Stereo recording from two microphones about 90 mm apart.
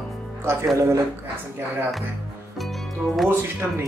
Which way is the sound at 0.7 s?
30° right (ahead or behind).